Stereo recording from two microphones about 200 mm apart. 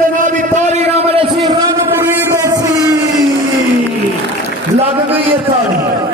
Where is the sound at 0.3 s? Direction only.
40° right (ahead or behind).